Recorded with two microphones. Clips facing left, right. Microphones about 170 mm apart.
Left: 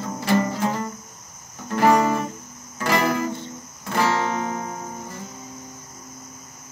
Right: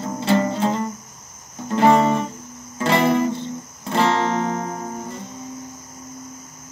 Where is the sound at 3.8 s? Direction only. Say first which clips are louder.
Right 3 dB; 25° right (ahead or behind).